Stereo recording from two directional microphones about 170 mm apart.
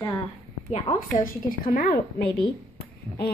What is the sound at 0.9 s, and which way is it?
Speech, 35° left (ahead or behind).